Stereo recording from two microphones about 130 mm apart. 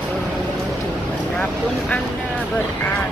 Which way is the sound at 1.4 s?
10° left (ahead or behind).